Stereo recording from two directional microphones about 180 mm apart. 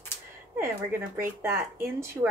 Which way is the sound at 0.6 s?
15° right (ahead or behind).